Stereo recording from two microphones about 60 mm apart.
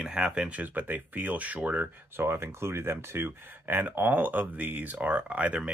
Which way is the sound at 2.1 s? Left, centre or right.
Right.